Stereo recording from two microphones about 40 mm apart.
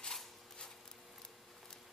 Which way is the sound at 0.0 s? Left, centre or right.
Centre.